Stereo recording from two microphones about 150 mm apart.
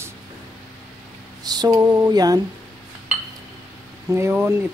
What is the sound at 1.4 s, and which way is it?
Speech, 25° right (ahead or behind).